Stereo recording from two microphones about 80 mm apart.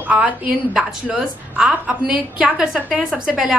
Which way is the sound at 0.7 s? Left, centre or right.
Centre.